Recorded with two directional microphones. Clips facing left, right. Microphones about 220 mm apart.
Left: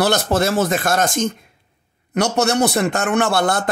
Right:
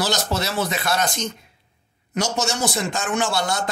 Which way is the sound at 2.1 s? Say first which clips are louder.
Left 7 dB; 60° left (ahead or behind).